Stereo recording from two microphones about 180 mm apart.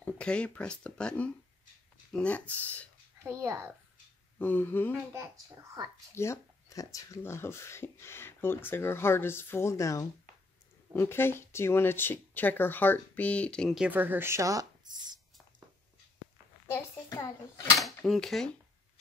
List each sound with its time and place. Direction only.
0.0 s speech: 5° left (ahead or behind)
3.3 s speech: 15° right (ahead or behind)
4.4 s speech: 10° left (ahead or behind)
5.2 s speech: 15° right (ahead or behind)
6.1 s speech: 15° left (ahead or behind)
13.8 s speech: 10° right (ahead or behind)
16.7 s speech: 15° left (ahead or behind)
17.7 s speech: centre (ahead or behind)